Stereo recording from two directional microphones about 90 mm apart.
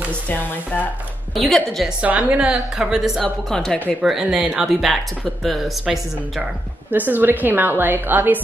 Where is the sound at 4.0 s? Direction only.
5° right (ahead or behind).